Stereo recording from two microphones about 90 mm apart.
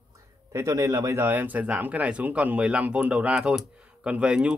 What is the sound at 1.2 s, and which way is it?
Speech, 20° right (ahead or behind).